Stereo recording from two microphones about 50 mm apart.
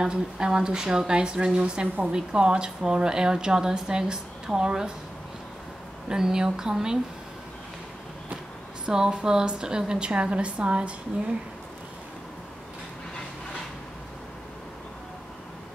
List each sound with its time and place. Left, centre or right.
0.0 s speech: centre
6.0 s speech: centre
8.8 s speech: centre